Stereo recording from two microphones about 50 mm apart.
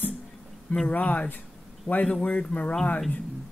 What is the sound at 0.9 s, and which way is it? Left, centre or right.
Speech, left.